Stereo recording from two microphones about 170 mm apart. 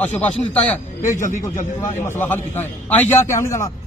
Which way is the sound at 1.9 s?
15° left (ahead or behind).